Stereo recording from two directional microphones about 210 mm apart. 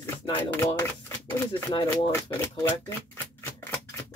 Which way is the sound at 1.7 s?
25° left (ahead or behind).